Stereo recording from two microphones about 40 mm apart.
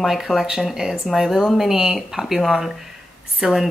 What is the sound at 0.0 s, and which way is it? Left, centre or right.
Speech, centre.